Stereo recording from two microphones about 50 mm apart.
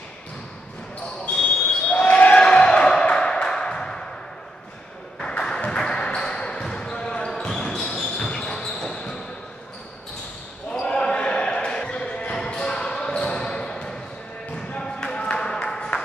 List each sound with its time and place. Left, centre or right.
1.3 s basketball bounce: left
5.8 s basketball bounce: centre
10.7 s basketball bounce: centre
14.8 s a sound: centre